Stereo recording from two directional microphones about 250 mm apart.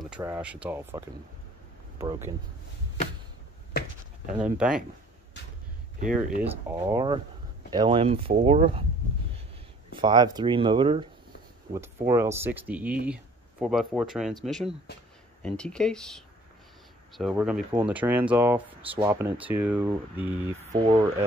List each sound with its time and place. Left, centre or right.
0.2 s speech: centre
4.4 s speech: centre
6.4 s speech: centre; by 8.8 s right
9.9 s speech: centre
12.1 s speech: centre